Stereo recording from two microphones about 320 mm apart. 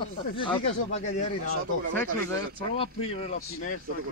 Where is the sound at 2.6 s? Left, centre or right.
Centre.